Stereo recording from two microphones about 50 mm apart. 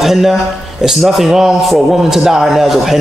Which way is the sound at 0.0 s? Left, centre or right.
Centre.